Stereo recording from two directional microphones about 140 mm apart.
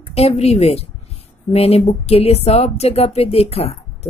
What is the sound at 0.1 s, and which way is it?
A woman's voice, 45° left (ahead or behind).